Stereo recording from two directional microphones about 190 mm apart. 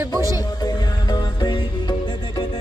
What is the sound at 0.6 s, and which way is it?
Music, 20° left (ahead or behind).